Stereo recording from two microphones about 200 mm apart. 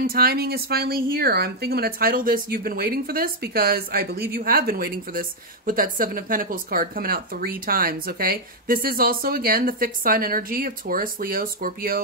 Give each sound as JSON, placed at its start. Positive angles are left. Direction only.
{"t": 0.0, "sound": "speech", "side_deg": -50}